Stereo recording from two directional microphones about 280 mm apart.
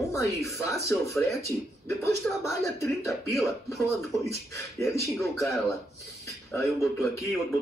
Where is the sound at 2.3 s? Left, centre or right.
Centre.